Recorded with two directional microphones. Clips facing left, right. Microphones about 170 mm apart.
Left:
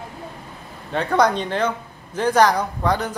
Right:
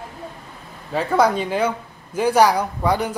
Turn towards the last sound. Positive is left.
turn(degrees=-10)  # may be behind; listen again after turning